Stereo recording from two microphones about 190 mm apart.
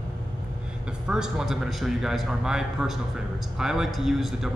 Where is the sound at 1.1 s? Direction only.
5° right (ahead or behind).